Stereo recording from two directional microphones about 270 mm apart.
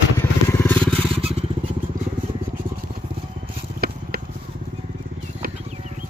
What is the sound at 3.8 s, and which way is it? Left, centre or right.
Vehicle, right.